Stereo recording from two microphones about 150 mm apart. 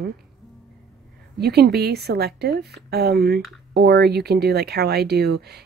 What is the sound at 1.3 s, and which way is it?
Speech, 90° right.